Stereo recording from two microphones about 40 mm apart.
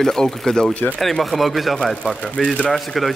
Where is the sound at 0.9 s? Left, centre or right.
Centre.